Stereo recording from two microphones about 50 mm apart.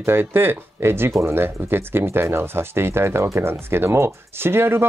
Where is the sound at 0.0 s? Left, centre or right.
Right.